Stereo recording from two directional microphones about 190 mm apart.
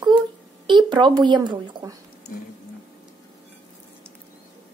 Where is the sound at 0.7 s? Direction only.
25° right (ahead or behind).